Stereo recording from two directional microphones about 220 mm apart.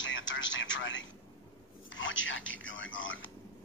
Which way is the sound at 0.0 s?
60° left (ahead or behind).